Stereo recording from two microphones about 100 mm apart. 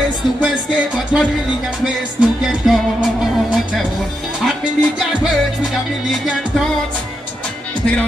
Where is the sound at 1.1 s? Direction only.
5° right (ahead or behind).